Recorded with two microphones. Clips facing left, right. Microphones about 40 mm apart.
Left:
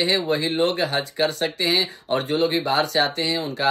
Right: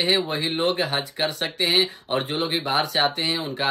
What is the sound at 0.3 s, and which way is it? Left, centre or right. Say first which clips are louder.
Speech: left 4 dB; right.